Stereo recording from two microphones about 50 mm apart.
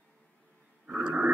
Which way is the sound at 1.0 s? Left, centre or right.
Right.